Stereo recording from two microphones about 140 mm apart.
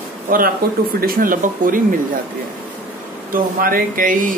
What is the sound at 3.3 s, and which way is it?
Speech, 80° right.